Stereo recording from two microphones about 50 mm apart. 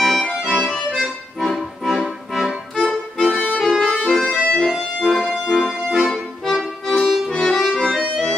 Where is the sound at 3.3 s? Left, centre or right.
Left.